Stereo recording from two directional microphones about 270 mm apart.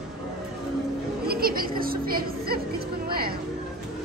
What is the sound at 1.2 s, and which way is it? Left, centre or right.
Speech, right.